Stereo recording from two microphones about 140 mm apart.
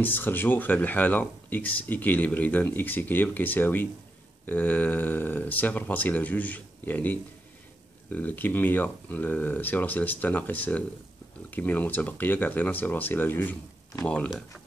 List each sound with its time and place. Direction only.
0.0 s speech: 15° left (ahead or behind)